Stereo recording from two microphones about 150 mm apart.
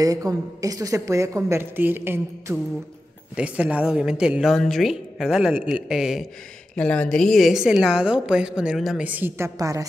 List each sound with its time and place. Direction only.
0.0 s a woman's voice: 25° right (ahead or behind); by 6.2 s 5° right (ahead or behind)
6.7 s a woman's voice: 5° left (ahead or behind); by 9.8 s 20° right (ahead or behind)